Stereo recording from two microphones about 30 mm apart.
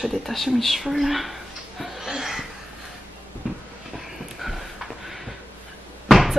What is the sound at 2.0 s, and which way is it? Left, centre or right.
Chuckle, centre.